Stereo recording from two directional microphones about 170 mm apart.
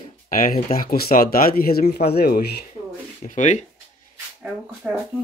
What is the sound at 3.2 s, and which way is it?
Speech, 45° left (ahead or behind).